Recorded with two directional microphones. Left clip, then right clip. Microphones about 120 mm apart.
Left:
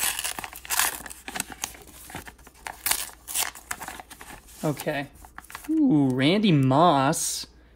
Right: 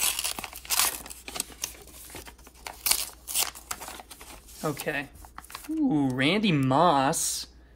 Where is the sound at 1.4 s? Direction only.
40° right (ahead or behind).